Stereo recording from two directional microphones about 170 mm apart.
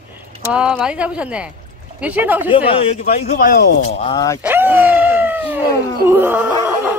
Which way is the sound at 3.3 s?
65° left (ahead or behind).